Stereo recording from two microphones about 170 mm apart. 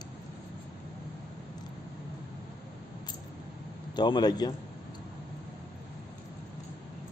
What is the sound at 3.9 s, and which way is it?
Speech, 25° left (ahead or behind).